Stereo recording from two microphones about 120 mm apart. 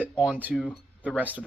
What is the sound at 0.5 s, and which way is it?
Speech, 5° left (ahead or behind).